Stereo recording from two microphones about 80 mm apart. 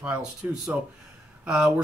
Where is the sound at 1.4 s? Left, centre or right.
Centre.